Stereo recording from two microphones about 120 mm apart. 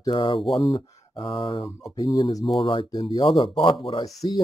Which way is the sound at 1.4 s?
50° left (ahead or behind).